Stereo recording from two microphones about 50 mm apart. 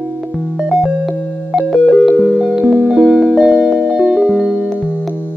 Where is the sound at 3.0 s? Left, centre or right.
Centre.